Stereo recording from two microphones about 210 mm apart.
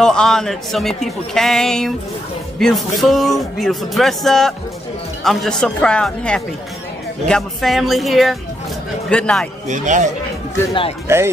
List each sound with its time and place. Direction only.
0.0 s speech: centre (ahead or behind)
9.7 s speech: 35° right (ahead or behind)
11.1 s speech: 10° right (ahead or behind)